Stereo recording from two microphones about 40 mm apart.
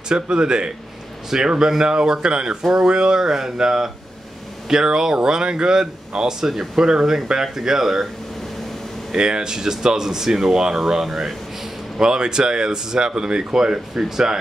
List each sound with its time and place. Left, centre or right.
0.1 s speech: right
6.4 s speech: centre
6.9 s speech: centre
9.1 s speech: centre
12.0 s speech: centre